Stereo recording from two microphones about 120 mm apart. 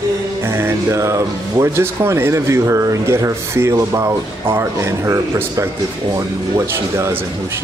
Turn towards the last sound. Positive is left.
turn(degrees=-25)  # may be behind; listen again after turning